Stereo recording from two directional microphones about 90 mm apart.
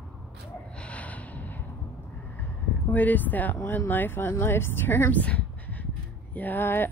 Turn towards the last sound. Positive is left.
turn(degrees=25)  # may be behind; listen again after turning